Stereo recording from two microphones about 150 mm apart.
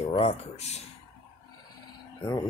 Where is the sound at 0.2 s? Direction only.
45° left (ahead or behind).